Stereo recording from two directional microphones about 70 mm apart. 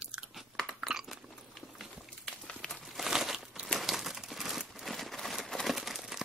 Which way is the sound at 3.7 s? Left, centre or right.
Centre.